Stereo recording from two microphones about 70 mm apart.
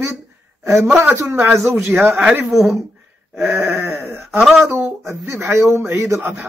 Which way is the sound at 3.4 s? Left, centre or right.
Right.